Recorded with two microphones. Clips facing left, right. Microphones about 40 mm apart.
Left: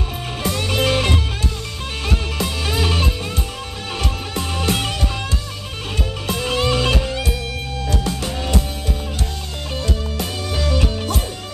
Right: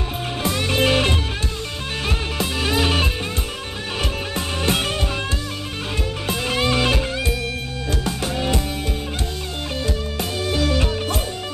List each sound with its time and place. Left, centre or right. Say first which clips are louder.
0.4 s music: even; right
4.4 s music: left 1 dB; right
6.2 s music: left 2 dB; right
9.8 s music: even; right